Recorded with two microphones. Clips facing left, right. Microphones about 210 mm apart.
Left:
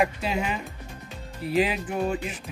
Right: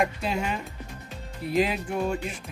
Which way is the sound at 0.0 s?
5° left (ahead or behind).